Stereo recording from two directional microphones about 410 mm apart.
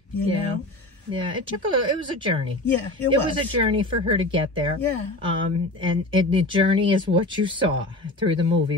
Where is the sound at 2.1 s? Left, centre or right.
Centre.